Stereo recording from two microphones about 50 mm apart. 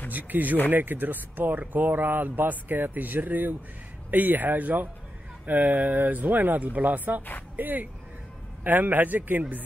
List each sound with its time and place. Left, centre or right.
0.1 s speech: right